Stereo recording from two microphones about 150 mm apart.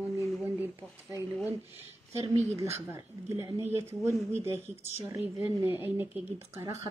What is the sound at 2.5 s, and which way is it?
Speech, 20° right (ahead or behind).